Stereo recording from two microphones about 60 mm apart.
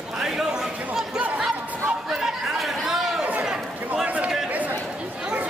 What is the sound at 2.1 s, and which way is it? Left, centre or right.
Chatter, centre.